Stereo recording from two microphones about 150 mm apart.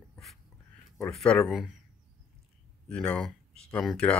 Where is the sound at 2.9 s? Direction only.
5° left (ahead or behind).